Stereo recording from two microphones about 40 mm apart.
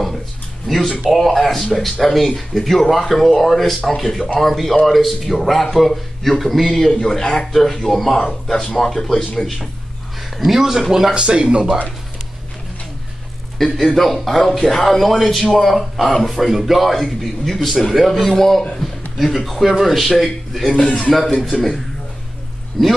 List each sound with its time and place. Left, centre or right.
0.7 s speech: centre
10.3 s speech: centre
11.1 s speech: right
13.6 s a man's voice: centre
20.8 s speech: centre
21.5 s speech: centre